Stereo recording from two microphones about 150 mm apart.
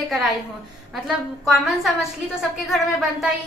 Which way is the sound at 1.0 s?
Centre (ahead or behind).